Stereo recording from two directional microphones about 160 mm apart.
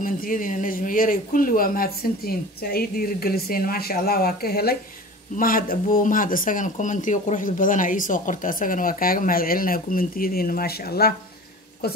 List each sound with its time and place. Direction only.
0.0 s speech: 60° left (ahead or behind)
5.3 s speech: 60° left (ahead or behind)